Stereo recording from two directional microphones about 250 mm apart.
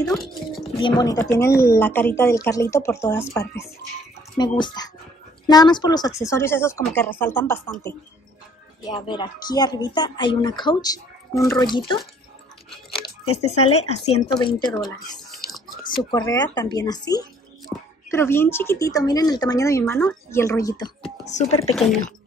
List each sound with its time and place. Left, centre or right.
0.0 s speech: centre
0.7 s speech: centre
12.9 s a sound: left
14.0 s speech: left
15.9 s speech: centre
21.3 s speech: left
21.7 s speech: centre